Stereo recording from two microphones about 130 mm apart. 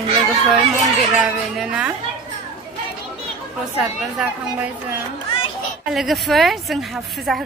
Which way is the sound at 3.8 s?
5° right (ahead or behind).